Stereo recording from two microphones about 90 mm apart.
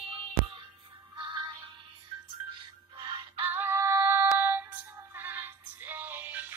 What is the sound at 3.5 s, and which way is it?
Female singing, 20° right (ahead or behind).